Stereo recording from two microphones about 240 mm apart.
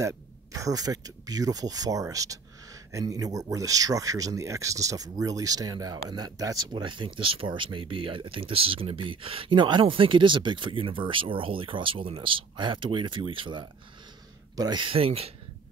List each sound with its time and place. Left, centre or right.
0.0 s speech: centre